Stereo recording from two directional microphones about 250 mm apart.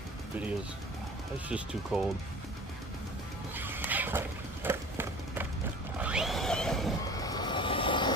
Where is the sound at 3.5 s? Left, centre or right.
Centre.